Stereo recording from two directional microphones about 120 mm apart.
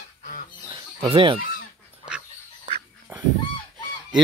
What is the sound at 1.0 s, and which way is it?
Speech, 45° right (ahead or behind).